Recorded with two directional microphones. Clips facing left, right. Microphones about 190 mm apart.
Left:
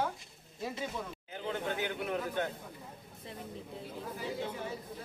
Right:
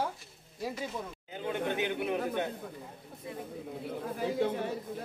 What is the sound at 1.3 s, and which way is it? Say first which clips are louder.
Chatter: right 3 dB; 20° right (ahead or behind).